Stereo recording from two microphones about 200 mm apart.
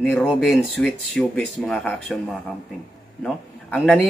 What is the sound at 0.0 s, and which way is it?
Speech, 10° left (ahead or behind).